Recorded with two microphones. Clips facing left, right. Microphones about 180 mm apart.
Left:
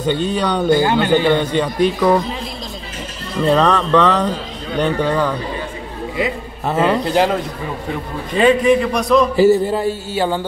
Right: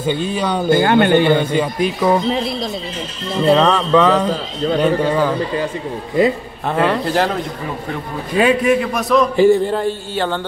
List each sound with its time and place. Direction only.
0.0 s a man's voice: 5° right (ahead or behind)
0.7 s a man's voice: 60° right (ahead or behind)
1.3 s a man's voice: 5° right (ahead or behind)
3.5 s a man's voice: 5° right (ahead or behind)
6.7 s a man's voice: centre (ahead or behind)
8.4 s a man's voice: 5° right (ahead or behind); by 10.4 s 10° left (ahead or behind)